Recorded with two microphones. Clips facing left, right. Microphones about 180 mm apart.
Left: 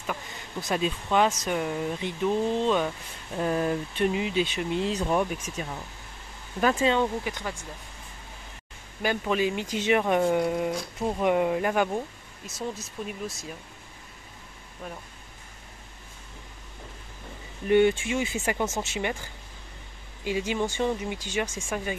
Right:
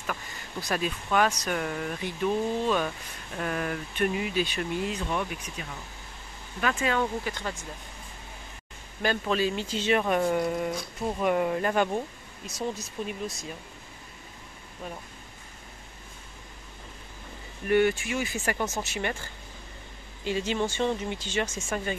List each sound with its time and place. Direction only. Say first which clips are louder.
0.0 s speech: left 1 dB; 20° left (ahead or behind)
4.9 s speech: left 5 dB; 40° left (ahead or behind)
6.6 s speech: left 5 dB; 35° left (ahead or behind)
6.9 s speech: left 3 dB; 15° left (ahead or behind)
9.0 s speech: left 1 dB; 15° left (ahead or behind)
17.6 s speech: left 3 dB; 20° left (ahead or behind)
20.2 s speech: even; 10° left (ahead or behind)